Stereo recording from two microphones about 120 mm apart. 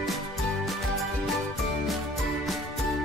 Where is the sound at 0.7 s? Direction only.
Centre (ahead or behind).